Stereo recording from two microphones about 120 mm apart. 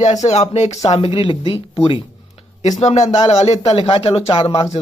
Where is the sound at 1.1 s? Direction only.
40° left (ahead or behind).